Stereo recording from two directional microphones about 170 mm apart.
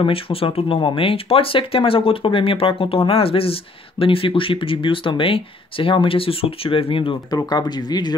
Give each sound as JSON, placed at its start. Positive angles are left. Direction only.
{"t": 0.0, "sound": "speech", "side_deg": 35}